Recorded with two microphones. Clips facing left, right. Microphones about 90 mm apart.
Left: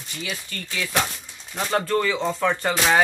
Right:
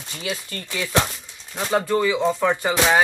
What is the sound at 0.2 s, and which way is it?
Speech, 35° right (ahead or behind).